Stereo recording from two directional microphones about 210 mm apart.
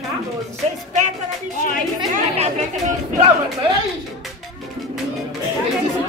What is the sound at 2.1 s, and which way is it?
Speech, 35° right (ahead or behind).